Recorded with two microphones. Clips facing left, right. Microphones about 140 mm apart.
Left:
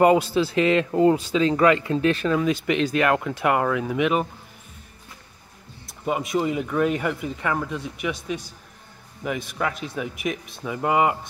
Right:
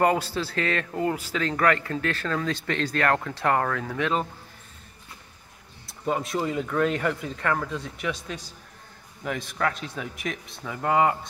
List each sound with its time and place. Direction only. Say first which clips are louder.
0.0 s a man's voice: left 6 dB; 15° left (ahead or behind)
6.0 s a man's voice: left 3 dB; 10° left (ahead or behind)
9.6 s a man's voice: right 1 dB; 10° left (ahead or behind)